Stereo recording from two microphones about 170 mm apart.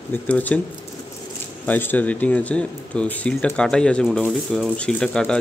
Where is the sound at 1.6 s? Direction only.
10° left (ahead or behind).